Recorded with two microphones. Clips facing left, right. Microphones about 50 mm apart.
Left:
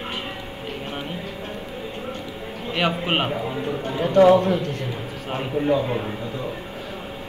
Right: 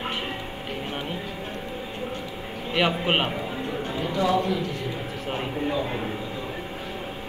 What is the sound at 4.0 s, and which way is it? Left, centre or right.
Speech, left.